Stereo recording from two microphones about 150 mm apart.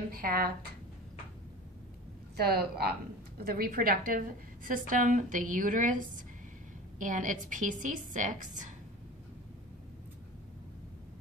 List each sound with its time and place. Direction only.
0.1 s speech: 75° right (ahead or behind)
2.3 s a woman's voice: 90° right; by 4.2 s 75° right (ahead or behind)
4.6 s a woman's voice: 65° right (ahead or behind)
7.0 s a woman's voice: 60° right (ahead or behind)